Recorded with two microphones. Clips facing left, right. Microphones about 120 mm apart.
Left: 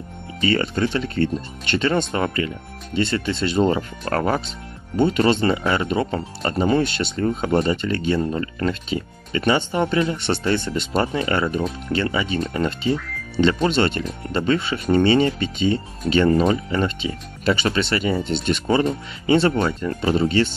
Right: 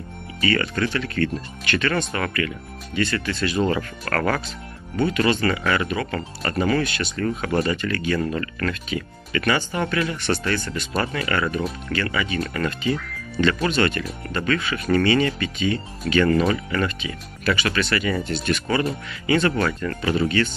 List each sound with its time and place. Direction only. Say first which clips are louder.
0.4 s speech: left 2 dB; 25° left (ahead or behind)